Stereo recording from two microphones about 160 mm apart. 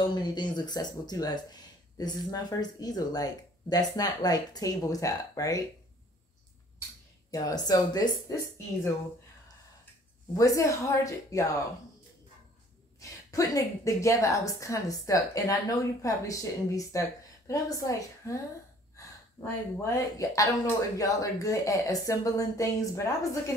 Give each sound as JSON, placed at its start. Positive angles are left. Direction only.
{"t": 0.0, "sound": "speech", "side_deg": 25}
{"t": 7.2, "sound": "speech", "side_deg": 20}
{"t": 10.3, "sound": "speech", "side_deg": 20}
{"t": 13.0, "sound": "speech", "side_deg": 20}
{"t": 19.8, "sound": "speech", "side_deg": 20}